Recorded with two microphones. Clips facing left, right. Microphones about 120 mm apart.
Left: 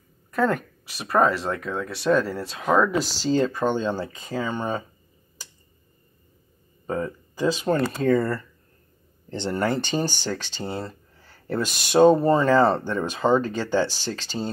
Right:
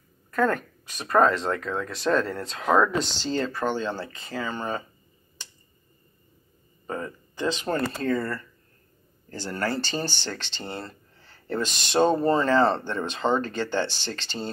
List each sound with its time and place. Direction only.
0.3 s speech: 10° left (ahead or behind)
6.9 s speech: 10° left (ahead or behind)
8.1 s speech: 25° left (ahead or behind); by 14.5 s 5° left (ahead or behind)